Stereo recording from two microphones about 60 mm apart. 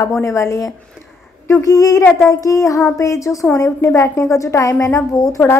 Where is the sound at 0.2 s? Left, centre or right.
Left.